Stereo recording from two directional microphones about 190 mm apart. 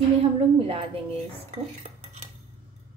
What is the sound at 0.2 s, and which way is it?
Speech, 30° right (ahead or behind).